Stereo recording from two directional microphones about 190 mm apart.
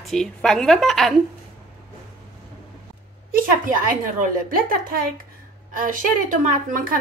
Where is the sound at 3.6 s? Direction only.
45° right (ahead or behind).